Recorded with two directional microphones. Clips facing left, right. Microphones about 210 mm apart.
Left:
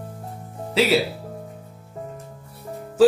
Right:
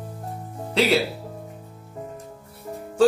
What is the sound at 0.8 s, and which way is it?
Speech, 5° left (ahead or behind).